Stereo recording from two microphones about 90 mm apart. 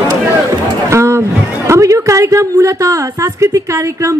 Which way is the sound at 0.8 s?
30° right (ahead or behind).